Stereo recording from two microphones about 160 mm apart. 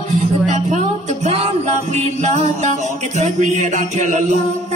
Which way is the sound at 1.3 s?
45° right (ahead or behind).